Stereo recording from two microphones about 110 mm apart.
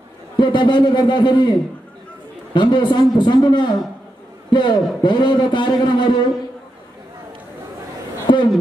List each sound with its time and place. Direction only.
0.4 s a man's voice: 45° left (ahead or behind)
2.5 s a man's voice: 45° left (ahead or behind)
8.3 s speech: 45° left (ahead or behind)